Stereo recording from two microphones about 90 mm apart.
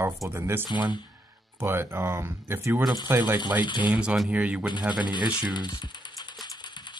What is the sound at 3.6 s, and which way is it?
Speech, 60° left (ahead or behind).